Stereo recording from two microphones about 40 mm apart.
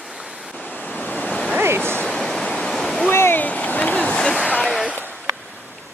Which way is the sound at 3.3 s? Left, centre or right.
Left.